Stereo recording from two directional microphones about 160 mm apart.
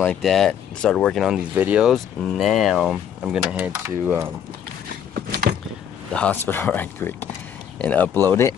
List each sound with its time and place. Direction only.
0.0 s speech: 5° left (ahead or behind); by 4.3 s 15° right (ahead or behind)
5.1 s a sound: 70° right (ahead or behind)
6.1 s speech: 10° left (ahead or behind)